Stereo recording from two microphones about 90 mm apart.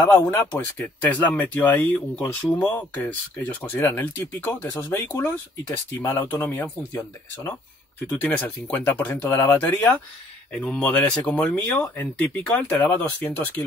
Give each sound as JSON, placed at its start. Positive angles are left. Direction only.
{"t": 0.0, "sound": "speech", "side_deg": 25}